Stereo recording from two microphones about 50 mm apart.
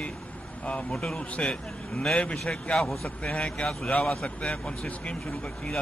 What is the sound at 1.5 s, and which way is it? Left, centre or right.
A man's voice, centre.